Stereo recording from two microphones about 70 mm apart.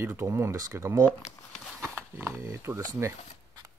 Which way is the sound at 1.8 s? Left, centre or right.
Right.